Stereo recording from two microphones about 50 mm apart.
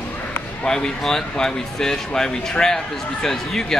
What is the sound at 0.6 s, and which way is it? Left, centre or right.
Speech, centre.